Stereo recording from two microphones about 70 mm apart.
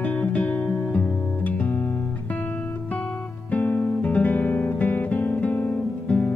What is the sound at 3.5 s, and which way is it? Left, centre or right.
Guitar, left.